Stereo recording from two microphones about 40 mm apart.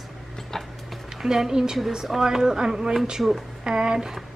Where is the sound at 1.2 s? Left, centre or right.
Centre.